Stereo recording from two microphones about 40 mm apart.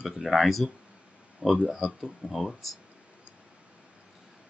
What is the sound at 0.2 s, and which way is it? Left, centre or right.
Speech, centre.